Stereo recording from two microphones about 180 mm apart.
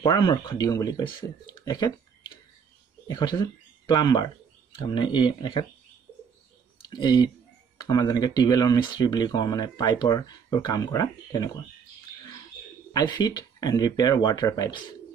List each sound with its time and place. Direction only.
0.0 s speech: 25° left (ahead or behind)
6.9 s speech: 25° left (ahead or behind)
12.9 s speech: 25° left (ahead or behind)